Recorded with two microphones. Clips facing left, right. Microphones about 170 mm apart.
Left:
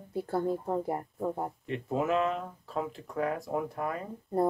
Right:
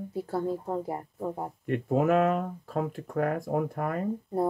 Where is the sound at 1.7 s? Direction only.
50° right (ahead or behind).